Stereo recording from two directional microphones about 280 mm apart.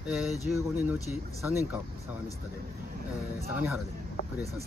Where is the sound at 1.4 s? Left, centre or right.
Centre.